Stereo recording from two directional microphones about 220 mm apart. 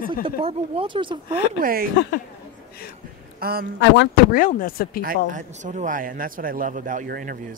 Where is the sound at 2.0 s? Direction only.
55° left (ahead or behind).